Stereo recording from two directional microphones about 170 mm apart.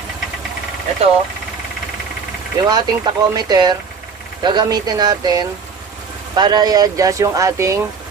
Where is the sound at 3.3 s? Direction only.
25° right (ahead or behind).